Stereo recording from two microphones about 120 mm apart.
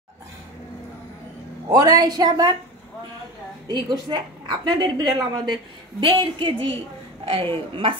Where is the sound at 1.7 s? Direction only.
30° right (ahead or behind).